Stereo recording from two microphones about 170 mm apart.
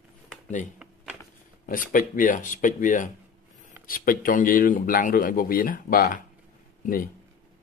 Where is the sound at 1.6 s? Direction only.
50° left (ahead or behind).